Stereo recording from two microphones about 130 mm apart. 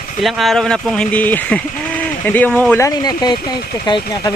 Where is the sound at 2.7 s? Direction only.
25° left (ahead or behind).